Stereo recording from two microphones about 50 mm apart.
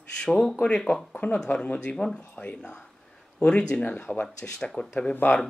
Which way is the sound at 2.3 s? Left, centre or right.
Left.